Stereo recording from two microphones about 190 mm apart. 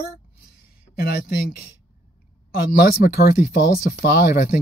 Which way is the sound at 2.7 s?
50° left (ahead or behind).